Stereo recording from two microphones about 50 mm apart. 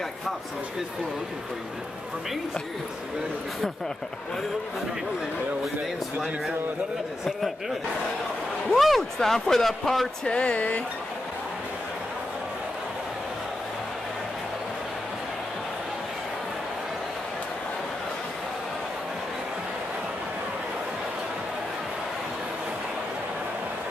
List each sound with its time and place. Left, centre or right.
8.7 s speech: centre
10.2 s speech: left